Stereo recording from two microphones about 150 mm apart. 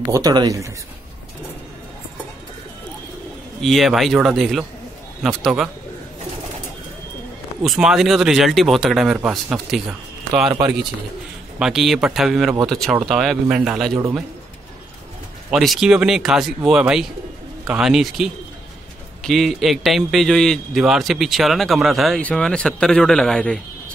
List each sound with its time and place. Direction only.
0.0 s speech: 20° right (ahead or behind)
3.6 s a man's voice: centre (ahead or behind)
7.6 s a man's voice: centre (ahead or behind)
11.6 s a man's voice: centre (ahead or behind)
13.9 s speech: 20° right (ahead or behind)
15.5 s a man's voice: centre (ahead or behind)